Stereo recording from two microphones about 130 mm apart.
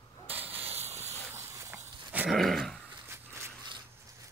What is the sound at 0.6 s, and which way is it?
Hiss, 55° right (ahead or behind).